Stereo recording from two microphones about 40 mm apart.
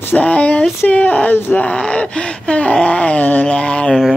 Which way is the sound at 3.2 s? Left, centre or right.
Left.